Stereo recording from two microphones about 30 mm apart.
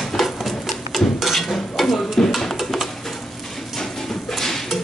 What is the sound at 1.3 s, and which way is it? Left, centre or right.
Stir, centre.